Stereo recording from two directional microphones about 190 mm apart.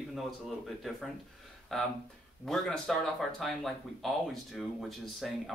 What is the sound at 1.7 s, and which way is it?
Speech, centre (ahead or behind).